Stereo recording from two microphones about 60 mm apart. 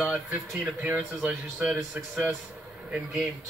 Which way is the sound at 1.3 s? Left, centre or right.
Centre.